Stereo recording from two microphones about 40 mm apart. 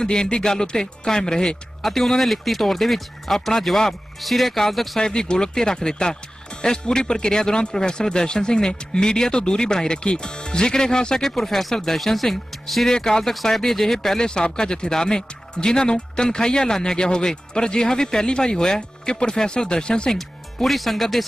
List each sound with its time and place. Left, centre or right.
0.0 s speech: centre
1.8 s speech: centre
5.0 s speech: centre
11.1 s speech: centre
12.9 s speech: centre
14.2 s speech: left
20.1 s speech: centre